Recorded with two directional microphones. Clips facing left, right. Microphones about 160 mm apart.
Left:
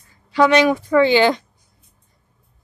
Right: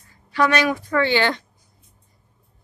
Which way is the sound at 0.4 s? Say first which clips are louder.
Left 5 dB; 20° left (ahead or behind).